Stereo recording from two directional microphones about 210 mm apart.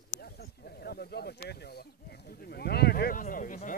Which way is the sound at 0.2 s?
50° left (ahead or behind).